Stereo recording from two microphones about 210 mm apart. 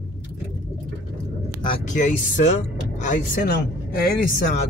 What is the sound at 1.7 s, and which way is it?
Speech, 35° left (ahead or behind).